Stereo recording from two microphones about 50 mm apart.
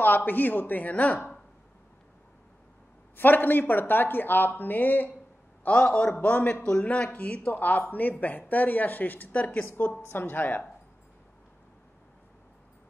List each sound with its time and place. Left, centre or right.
0.0 s speech: left
3.2 s speech: left
5.8 s a man's voice: centre
6.2 s speech: left
10.0 s speech: left